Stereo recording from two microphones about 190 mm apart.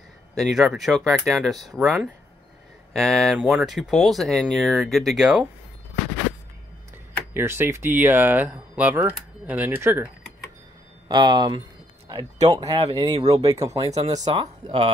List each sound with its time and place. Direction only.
0.3 s speech: centre (ahead or behind)
7.3 s speech: 10° right (ahead or behind)
11.1 s speech: 20° right (ahead or behind)